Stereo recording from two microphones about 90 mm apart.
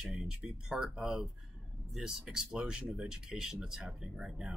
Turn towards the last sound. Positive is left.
turn(degrees=-5)  # may be behind; listen again after turning